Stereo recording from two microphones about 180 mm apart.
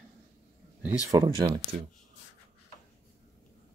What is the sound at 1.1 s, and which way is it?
Speech, 20° right (ahead or behind).